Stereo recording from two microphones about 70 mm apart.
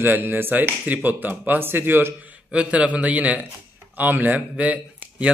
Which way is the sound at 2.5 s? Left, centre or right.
Centre.